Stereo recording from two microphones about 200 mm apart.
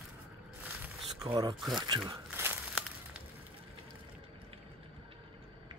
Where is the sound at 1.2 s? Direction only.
20° right (ahead or behind).